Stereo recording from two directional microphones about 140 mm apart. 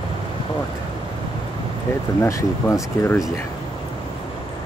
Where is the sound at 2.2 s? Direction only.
20° left (ahead or behind).